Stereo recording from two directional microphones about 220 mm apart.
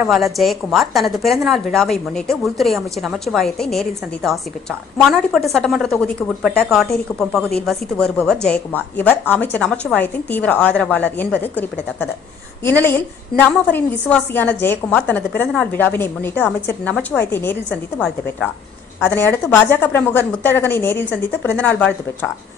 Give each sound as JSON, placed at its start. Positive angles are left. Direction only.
{"t": 0.0, "sound": "a woman's voice", "side_deg": 0}